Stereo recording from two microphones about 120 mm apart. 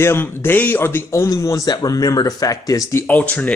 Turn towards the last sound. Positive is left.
turn(degrees=10)  # may be behind; listen again after turning